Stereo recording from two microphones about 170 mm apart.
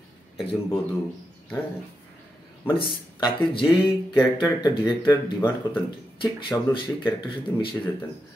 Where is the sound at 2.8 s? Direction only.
30° left (ahead or behind).